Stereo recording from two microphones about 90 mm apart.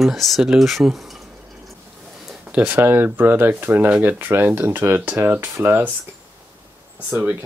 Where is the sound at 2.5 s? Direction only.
20° right (ahead or behind).